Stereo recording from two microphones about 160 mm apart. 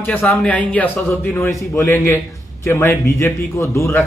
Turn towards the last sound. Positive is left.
turn(degrees=20)  # may be behind; listen again after turning